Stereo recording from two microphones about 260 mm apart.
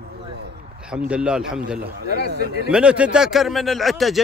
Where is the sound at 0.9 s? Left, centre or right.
Centre.